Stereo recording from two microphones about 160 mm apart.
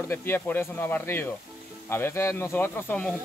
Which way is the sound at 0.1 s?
15° left (ahead or behind).